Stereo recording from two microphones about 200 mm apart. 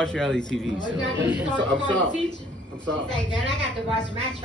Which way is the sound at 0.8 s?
20° left (ahead or behind).